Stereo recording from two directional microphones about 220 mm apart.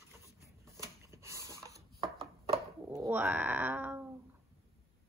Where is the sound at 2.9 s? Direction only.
10° right (ahead or behind).